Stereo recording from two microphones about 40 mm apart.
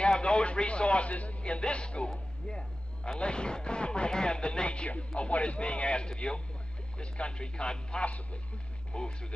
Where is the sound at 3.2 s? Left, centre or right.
Left.